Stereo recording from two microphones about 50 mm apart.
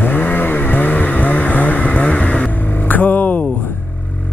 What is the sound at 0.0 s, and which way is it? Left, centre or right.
Vehicle, left.